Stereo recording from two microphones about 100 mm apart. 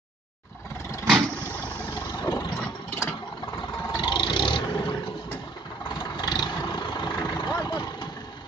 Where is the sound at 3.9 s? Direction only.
50° left (ahead or behind).